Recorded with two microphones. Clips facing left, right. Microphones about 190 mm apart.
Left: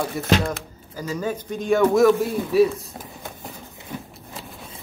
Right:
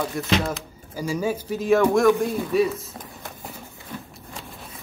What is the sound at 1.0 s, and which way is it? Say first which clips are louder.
Speech: right 2 dB; 10° right (ahead or behind).